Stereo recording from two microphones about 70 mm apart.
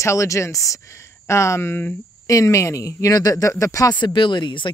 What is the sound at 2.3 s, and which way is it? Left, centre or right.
Speech, left.